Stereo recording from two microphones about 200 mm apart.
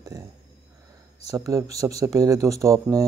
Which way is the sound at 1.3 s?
15° right (ahead or behind).